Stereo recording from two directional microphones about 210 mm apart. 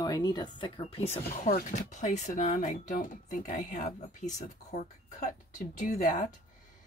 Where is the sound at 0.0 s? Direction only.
20° left (ahead or behind).